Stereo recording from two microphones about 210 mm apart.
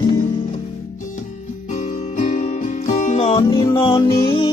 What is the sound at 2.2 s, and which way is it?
Music, 35° left (ahead or behind).